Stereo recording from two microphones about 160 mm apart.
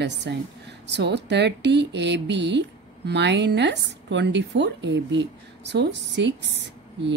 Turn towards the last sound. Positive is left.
turn(degrees=-90)